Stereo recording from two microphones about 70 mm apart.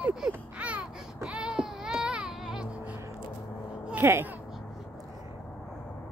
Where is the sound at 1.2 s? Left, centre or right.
Centre.